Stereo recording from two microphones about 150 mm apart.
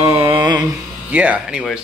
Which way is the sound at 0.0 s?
20° right (ahead or behind).